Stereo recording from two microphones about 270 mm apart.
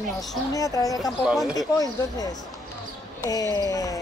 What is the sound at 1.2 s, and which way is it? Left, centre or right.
Speech, centre.